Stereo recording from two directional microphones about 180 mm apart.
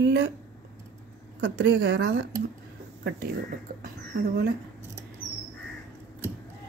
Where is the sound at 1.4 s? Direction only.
75° right (ahead or behind).